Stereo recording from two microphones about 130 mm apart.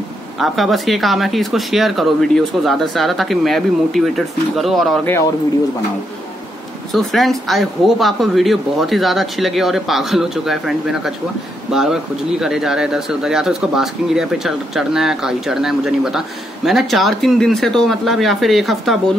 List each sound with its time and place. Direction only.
0.4 s speech: centre (ahead or behind)
5.0 s speech: 20° left (ahead or behind)
6.9 s speech: centre (ahead or behind)